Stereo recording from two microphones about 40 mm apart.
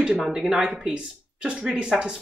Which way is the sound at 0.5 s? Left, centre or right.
Right.